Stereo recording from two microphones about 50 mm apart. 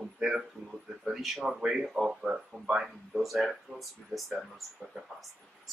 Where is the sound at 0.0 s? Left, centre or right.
Centre.